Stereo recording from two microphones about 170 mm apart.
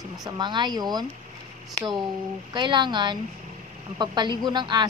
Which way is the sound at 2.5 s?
25° right (ahead or behind).